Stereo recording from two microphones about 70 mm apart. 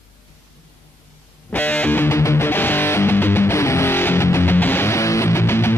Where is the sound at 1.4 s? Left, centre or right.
Left.